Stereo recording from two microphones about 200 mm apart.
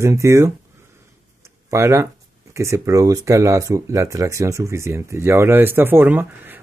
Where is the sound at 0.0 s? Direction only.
15° right (ahead or behind).